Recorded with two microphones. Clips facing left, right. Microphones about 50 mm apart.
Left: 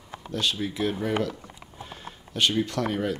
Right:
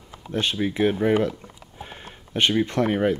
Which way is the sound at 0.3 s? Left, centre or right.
Right.